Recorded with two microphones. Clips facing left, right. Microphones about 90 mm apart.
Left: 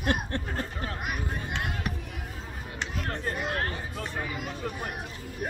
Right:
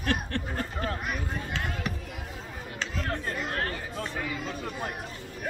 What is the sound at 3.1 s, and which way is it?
A child's voice, 20° left (ahead or behind).